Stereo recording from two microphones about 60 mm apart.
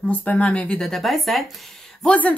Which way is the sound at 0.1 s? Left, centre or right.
Left.